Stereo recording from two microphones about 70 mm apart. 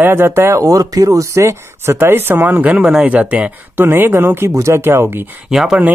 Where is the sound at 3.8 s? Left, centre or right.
Right.